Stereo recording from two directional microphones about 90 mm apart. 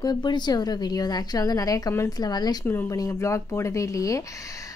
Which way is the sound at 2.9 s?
35° left (ahead or behind).